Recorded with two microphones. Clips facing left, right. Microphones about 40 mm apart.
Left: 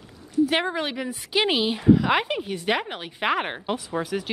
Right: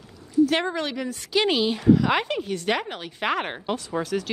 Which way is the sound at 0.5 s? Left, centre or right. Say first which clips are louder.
Even; centre.